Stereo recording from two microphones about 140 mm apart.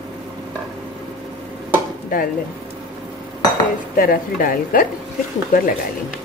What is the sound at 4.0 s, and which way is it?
Speech, 90° left.